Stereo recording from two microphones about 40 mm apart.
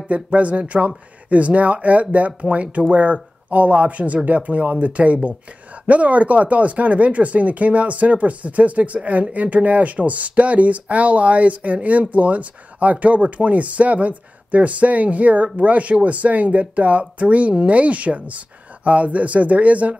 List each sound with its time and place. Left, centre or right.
0.1 s speech: right